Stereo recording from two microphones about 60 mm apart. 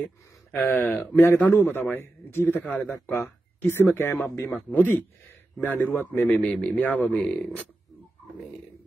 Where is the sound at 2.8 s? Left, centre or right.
Left.